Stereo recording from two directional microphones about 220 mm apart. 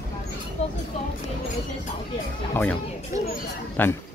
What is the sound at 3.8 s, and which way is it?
Speech, 10° left (ahead or behind).